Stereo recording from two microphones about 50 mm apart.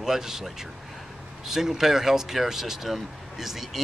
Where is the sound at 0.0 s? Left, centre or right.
Centre.